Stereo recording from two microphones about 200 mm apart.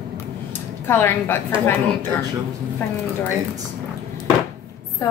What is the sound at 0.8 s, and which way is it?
Speech, 10° left (ahead or behind).